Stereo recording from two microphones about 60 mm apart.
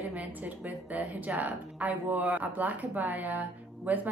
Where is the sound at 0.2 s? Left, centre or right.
Right.